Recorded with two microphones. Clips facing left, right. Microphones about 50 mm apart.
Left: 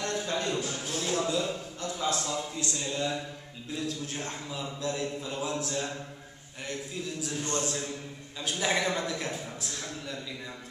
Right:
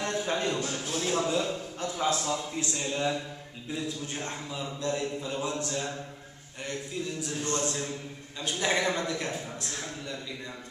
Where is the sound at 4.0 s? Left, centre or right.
Centre.